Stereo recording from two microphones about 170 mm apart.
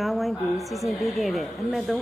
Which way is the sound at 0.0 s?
Centre (ahead or behind).